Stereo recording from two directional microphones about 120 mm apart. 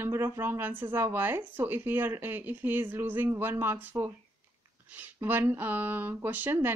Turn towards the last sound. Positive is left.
turn(degrees=-15)  # may be behind; listen again after turning